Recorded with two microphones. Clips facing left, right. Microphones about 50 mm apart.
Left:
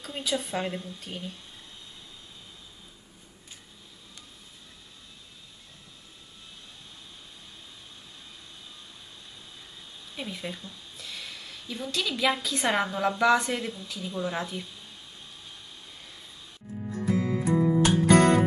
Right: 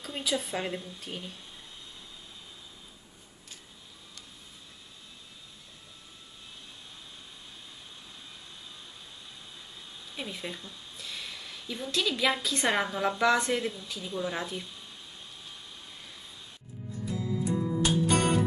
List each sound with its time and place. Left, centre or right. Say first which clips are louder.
0.0 s a woman's voice: left 1 dB; centre
10.1 s speech: left 2 dB; centre
16.9 s music: left 6 dB; left